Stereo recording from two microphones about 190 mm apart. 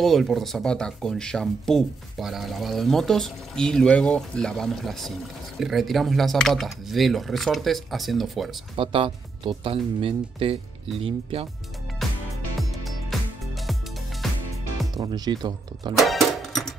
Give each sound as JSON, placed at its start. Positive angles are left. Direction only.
{"t": 0.0, "sound": "speech", "side_deg": 0}
{"t": 8.7, "sound": "speech", "side_deg": -30}
{"t": 12.0, "sound": "music", "side_deg": 0}
{"t": 14.2, "sound": "music", "side_deg": 0}
{"t": 15.0, "sound": "speech", "side_deg": -20}
{"t": 16.0, "sound": "music", "side_deg": 0}